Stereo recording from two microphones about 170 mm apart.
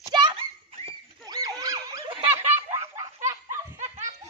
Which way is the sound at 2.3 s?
15° right (ahead or behind).